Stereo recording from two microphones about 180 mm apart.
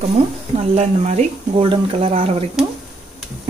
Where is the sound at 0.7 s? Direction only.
40° right (ahead or behind).